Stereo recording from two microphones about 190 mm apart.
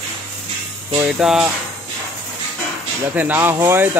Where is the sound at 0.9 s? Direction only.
5° right (ahead or behind).